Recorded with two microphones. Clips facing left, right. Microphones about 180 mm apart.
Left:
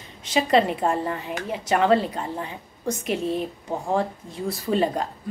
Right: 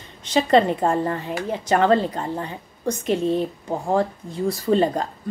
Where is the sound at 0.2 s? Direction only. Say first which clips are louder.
Right 3 dB; 5° left (ahead or behind).